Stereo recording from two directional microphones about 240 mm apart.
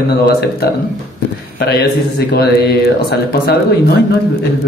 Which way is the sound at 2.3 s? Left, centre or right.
Left.